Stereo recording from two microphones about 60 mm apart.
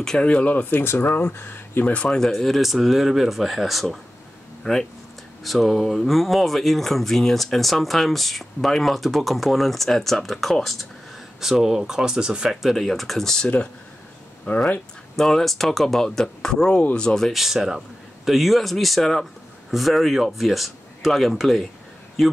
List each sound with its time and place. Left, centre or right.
0.2 s speech: left
2.0 s speech: centre
5.4 s speech: centre
12.4 s speech: centre
17.3 s speech: centre